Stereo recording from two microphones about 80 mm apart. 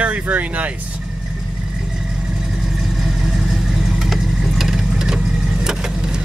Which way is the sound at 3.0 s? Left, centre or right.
Centre.